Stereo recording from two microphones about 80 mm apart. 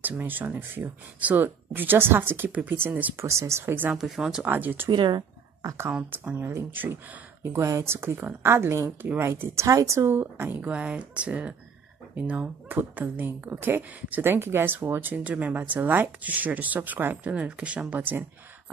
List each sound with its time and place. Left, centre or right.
0.0 s speech: right
3.3 s speech: right
3.9 s speech: centre
4.4 s speech: right
4.9 s speech: right
5.6 s speech: right
5.9 s speech: centre
6.3 s speech: right
10.7 s speech: centre